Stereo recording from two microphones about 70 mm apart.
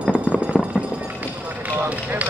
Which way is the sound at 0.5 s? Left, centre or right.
Centre.